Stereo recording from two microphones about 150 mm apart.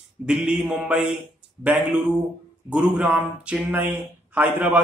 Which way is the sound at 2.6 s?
10° right (ahead or behind).